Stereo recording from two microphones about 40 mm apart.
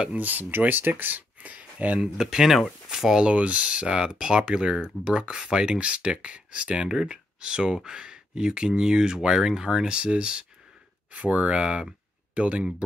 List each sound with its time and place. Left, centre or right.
0.2 s speech: right
2.1 s speech: centre
3.2 s speech: right
6.9 s speech: centre; by 12.6 s right